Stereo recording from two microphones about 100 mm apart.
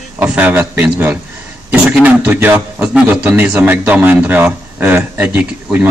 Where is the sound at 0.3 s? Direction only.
15° right (ahead or behind).